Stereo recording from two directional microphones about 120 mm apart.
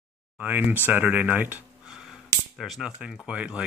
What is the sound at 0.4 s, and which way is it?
Speech, 15° right (ahead or behind).